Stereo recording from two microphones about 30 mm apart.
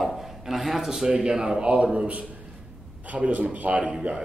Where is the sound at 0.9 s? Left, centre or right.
Right.